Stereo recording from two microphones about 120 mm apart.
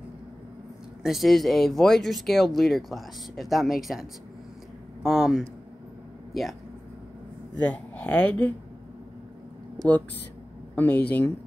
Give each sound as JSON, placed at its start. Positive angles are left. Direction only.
{"t": 1.0, "sound": "speech", "side_deg": 0}
{"t": 7.6, "sound": "speech", "side_deg": 10}
{"t": 10.8, "sound": "speech", "side_deg": 15}